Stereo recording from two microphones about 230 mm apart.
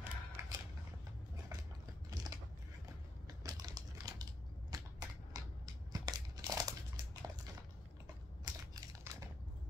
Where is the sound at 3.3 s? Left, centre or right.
Centre.